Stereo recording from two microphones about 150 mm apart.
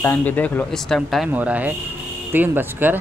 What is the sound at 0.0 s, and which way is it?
Speech, 15° left (ahead or behind).